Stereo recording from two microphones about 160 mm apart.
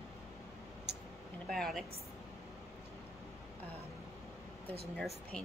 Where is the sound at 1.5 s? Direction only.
Centre (ahead or behind).